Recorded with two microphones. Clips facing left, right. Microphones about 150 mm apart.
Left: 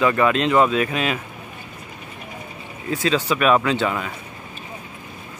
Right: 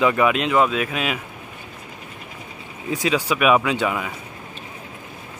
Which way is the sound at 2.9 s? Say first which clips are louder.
Left 1 dB; 15° right (ahead or behind).